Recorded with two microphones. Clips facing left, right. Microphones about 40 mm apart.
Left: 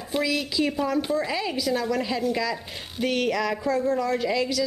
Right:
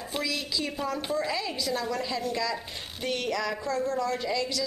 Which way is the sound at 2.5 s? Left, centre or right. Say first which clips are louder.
Left 2 dB; centre.